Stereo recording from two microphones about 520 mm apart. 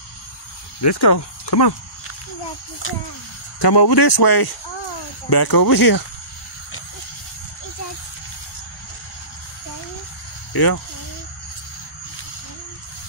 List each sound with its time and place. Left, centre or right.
0.8 s speech: left
3.5 s speech: left
10.5 s speech: left